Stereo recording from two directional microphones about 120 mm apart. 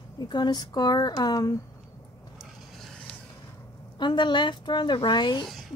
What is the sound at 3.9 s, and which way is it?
Speech, 40° left (ahead or behind).